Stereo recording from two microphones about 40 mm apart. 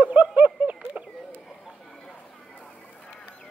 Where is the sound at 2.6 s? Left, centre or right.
Left.